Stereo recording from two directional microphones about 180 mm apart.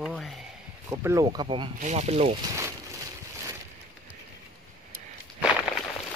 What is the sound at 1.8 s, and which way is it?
Speech, 40° right (ahead or behind).